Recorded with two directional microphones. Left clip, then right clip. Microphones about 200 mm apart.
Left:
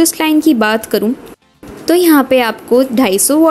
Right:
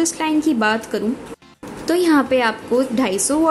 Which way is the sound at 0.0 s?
40° left (ahead or behind).